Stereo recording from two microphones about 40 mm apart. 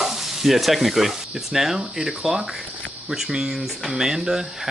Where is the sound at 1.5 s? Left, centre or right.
Centre.